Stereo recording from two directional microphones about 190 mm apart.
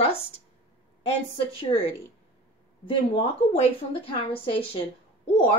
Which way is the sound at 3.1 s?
30° left (ahead or behind).